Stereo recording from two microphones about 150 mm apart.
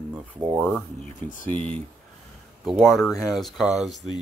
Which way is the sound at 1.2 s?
60° left (ahead or behind).